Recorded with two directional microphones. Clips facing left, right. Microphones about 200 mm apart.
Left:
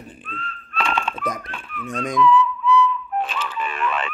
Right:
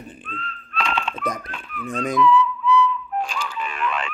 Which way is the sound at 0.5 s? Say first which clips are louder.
Left 2 dB; 50° left (ahead or behind).